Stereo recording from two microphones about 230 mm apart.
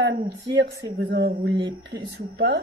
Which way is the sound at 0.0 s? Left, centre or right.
Right.